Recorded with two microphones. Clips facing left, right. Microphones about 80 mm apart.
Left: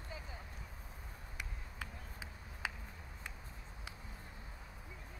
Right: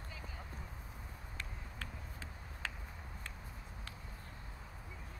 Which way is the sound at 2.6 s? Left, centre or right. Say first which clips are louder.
Left 2 dB; centre.